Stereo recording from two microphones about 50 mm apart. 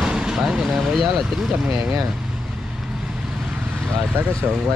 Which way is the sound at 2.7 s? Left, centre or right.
Centre.